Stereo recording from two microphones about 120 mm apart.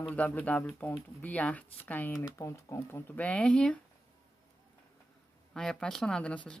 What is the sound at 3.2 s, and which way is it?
Speech, 10° left (ahead or behind).